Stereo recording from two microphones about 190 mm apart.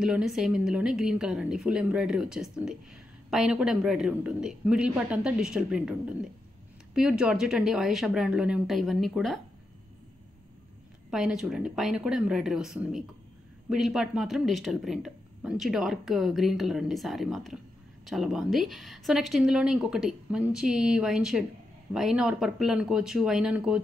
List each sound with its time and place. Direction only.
0.0 s a woman's voice: 5° right (ahead or behind)
11.1 s a woman's voice: 5° right (ahead or behind)